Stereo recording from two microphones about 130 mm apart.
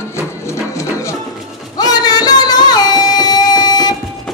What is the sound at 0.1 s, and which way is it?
Music, 20° left (ahead or behind).